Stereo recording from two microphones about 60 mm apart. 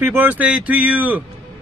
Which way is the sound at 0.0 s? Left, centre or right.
Right.